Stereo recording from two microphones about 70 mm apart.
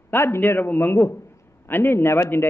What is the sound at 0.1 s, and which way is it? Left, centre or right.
A man's voice, left.